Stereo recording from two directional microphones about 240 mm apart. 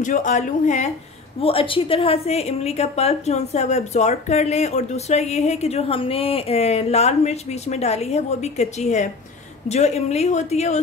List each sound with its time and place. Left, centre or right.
0.0 s a woman's voice: left